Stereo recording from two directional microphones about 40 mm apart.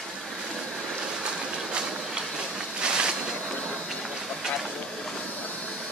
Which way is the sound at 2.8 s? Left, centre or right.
Right.